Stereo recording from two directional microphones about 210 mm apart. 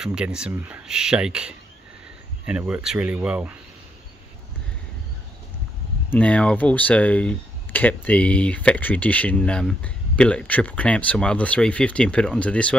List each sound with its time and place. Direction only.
0.0 s speech: 5° right (ahead or behind)
6.0 s speech: 5° left (ahead or behind)